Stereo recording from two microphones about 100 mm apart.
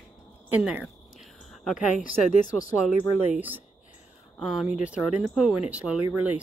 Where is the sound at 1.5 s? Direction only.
Centre (ahead or behind).